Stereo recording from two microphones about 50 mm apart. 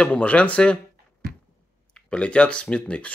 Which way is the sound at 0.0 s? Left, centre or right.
Left.